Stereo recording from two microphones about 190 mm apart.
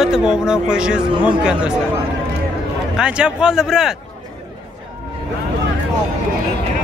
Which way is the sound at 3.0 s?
5° right (ahead or behind).